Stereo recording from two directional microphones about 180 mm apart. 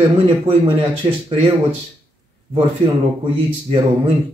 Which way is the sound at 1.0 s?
30° right (ahead or behind).